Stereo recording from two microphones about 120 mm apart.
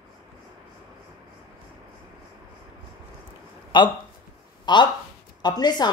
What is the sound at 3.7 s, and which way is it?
A man's voice, 40° left (ahead or behind).